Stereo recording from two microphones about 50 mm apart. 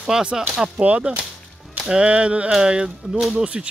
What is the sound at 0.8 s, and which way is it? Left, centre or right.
Speech, right.